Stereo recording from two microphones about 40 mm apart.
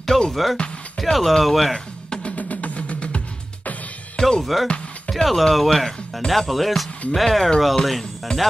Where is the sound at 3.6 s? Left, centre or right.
Left.